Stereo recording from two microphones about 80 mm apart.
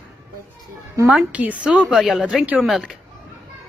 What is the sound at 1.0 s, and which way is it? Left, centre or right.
A woman's voice, centre.